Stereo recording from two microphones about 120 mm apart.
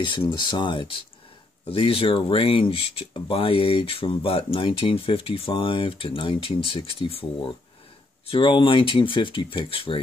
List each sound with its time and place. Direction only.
0.0 s speech: 40° left (ahead or behind)